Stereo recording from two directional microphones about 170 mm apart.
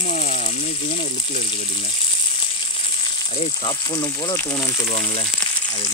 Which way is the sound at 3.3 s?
35° left (ahead or behind).